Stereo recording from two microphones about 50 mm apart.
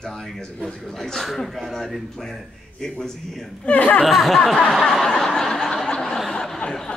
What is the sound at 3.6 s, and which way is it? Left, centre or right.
Speech, left.